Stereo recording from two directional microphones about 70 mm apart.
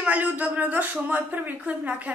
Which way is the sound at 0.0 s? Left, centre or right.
Right.